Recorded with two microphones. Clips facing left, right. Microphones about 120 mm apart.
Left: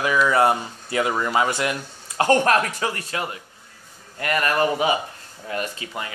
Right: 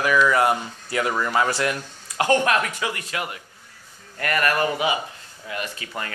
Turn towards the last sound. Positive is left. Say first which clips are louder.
# even
turn(degrees=15)  # may be behind; listen again after turning